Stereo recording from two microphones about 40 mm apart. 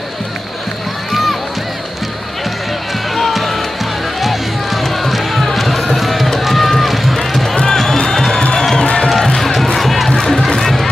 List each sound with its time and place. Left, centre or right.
3.2 s music: centre
6.8 s run: centre
7.2 s music: centre
8.4 s music: left
9.2 s music: centre
9.8 s crowd: centre
10.1 s music: centre